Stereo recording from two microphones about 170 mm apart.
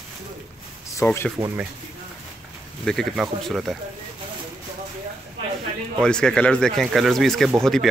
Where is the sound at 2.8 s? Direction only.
Centre (ahead or behind).